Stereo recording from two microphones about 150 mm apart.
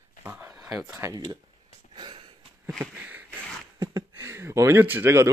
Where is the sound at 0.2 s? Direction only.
15° right (ahead or behind).